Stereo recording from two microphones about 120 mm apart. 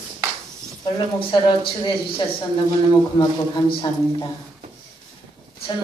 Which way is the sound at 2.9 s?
40° left (ahead or behind).